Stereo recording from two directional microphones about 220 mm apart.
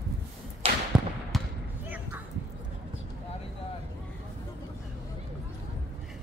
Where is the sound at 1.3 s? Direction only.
Centre (ahead or behind).